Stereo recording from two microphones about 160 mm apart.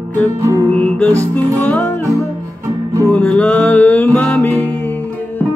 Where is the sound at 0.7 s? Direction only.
10° left (ahead or behind).